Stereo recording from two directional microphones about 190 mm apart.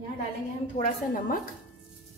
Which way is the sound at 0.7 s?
40° left (ahead or behind).